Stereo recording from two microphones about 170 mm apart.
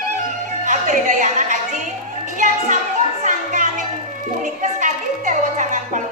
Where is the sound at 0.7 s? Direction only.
50° right (ahead or behind).